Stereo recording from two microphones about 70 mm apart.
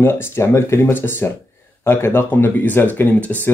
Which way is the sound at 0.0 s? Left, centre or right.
Left.